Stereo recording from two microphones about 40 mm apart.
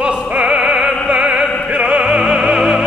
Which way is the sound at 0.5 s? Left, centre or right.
Centre.